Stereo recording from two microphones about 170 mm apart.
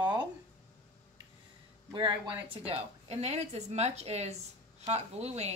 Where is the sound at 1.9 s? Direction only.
30° right (ahead or behind).